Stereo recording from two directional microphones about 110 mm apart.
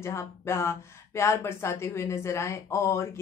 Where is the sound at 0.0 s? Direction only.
25° left (ahead or behind).